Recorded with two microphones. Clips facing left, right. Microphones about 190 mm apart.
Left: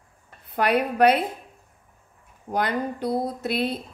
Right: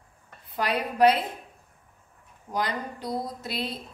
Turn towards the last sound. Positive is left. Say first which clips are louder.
# left 7 dB
turn(degrees=60)  # may be behind; listen again after turning